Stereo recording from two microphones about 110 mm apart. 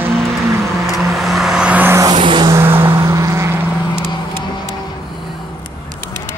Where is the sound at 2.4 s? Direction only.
20° right (ahead or behind).